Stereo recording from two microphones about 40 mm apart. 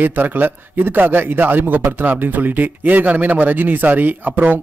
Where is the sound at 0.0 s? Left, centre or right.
Right.